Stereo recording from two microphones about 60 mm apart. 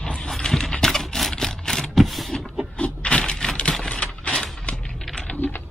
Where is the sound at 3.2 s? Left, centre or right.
Centre.